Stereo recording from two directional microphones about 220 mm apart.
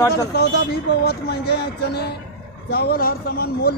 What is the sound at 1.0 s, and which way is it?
Speech, 45° left (ahead or behind).